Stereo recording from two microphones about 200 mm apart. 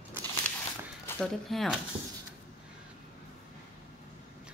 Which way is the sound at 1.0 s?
5° left (ahead or behind).